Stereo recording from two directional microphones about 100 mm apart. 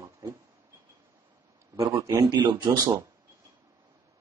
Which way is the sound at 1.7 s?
35° right (ahead or behind).